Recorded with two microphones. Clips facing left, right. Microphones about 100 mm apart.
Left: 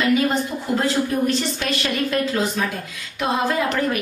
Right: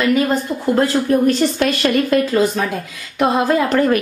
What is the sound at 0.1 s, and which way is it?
Speech, 45° right (ahead or behind).